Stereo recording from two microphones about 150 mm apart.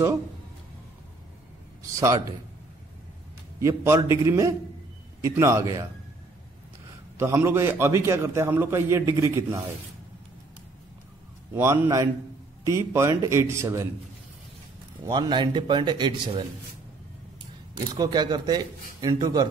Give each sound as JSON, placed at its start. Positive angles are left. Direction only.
{"t": 1.8, "sound": "speech", "side_deg": -20}
{"t": 3.5, "sound": "speech", "side_deg": -20}
{"t": 7.2, "sound": "a man's voice", "side_deg": -15}
{"t": 11.5, "sound": "a man's voice", "side_deg": -15}
{"t": 15.0, "sound": "speech", "side_deg": -30}
{"t": 17.9, "sound": "speech", "side_deg": -25}